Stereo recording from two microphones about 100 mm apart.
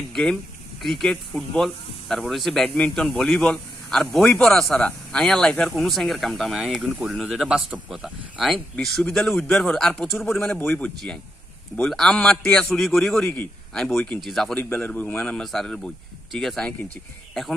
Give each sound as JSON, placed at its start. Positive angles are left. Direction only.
{"t": 0.1, "sound": "a man's voice", "side_deg": 5}
{"t": 10.5, "sound": "a man's voice", "side_deg": 15}
{"t": 11.7, "sound": "a man's voice", "side_deg": 5}
{"t": 14.5, "sound": "a man's voice", "side_deg": 15}